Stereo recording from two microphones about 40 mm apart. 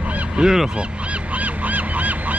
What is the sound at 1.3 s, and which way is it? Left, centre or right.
Goose, right.